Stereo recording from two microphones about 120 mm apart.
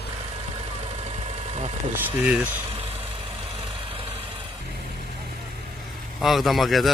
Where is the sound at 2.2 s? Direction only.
10° right (ahead or behind).